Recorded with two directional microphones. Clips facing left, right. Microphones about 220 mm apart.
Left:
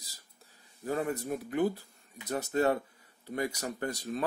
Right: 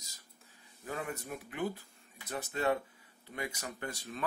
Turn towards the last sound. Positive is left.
turn(degrees=40)  # may be behind; listen again after turning